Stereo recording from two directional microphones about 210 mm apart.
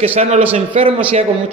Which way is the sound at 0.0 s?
30° right (ahead or behind).